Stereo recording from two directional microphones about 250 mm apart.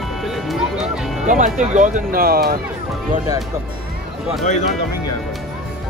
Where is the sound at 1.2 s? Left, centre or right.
Right.